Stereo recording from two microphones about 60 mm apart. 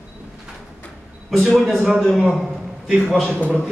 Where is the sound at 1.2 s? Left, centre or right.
Centre.